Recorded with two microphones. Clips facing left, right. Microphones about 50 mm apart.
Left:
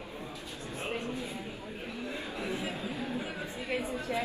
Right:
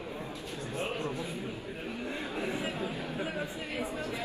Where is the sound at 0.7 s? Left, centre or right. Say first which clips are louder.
Right 1 dB; right.